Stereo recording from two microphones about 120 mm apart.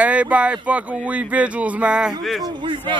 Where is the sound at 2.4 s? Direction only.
40° right (ahead or behind).